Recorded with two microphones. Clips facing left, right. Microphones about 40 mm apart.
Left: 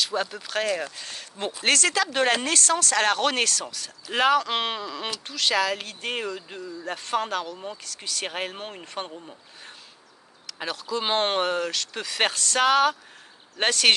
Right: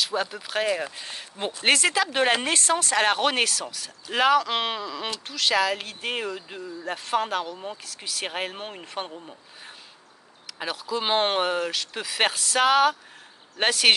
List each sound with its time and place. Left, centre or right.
0.0 s speech: centre
10.4 s speech: centre